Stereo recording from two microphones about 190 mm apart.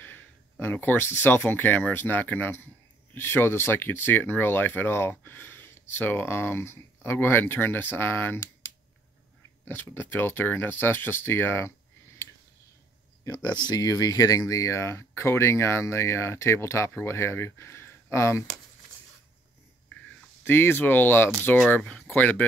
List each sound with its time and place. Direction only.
0.0 s speech: 10° left (ahead or behind)
9.7 s speech: 10° left (ahead or behind)
13.2 s speech: 20° left (ahead or behind)
20.4 s speech: 10° left (ahead or behind)